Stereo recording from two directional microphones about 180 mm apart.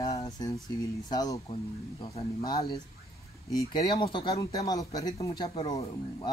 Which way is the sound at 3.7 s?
25° left (ahead or behind).